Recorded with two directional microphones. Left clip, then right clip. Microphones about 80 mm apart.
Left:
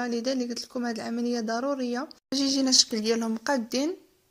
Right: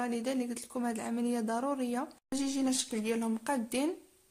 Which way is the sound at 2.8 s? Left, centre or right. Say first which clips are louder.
Left 11 dB; left.